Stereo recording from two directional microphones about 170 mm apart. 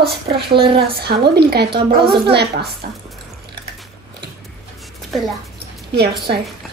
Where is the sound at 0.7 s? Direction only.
65° right (ahead or behind).